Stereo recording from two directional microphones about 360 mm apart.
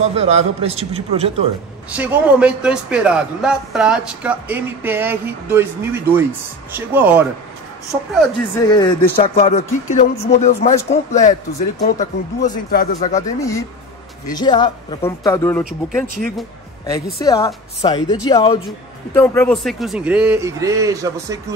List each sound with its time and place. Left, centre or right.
0.1 s a man's voice: centre
1.9 s a man's voice: centre
8.6 s a man's voice: centre
13.4 s a man's voice: centre